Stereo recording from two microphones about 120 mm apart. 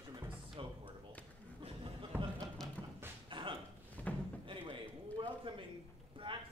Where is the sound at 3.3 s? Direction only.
45° right (ahead or behind).